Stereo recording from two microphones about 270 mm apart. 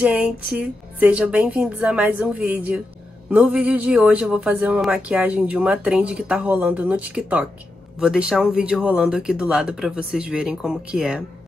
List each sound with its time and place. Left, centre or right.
0.0 s a man's voice: centre